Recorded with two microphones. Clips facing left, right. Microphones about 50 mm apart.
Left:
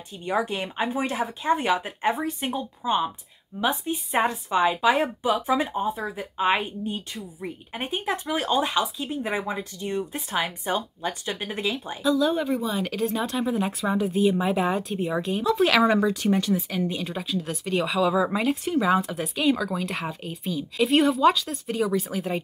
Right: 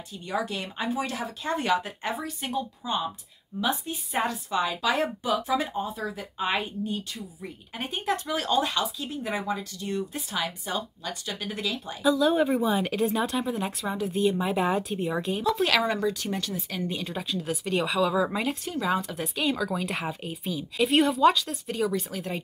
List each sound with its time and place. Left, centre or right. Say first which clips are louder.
0.2 s speech: left 4 dB; left
12.0 s speech: right 1 dB; centre
16.7 s speech: left 3 dB; centre